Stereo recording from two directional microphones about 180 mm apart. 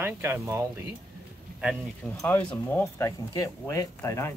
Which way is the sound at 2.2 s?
10° left (ahead or behind).